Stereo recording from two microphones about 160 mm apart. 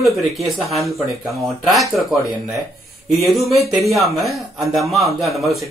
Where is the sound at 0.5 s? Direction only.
Centre (ahead or behind).